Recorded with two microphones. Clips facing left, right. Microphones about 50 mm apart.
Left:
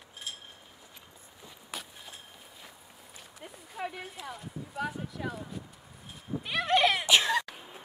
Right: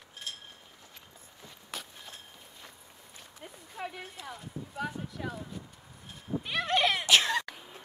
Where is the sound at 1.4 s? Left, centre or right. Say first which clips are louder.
Even; centre.